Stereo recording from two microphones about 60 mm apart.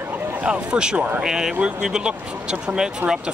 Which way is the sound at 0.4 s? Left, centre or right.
Centre.